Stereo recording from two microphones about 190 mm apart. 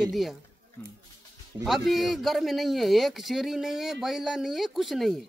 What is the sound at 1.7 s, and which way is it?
A man's voice, centre (ahead or behind).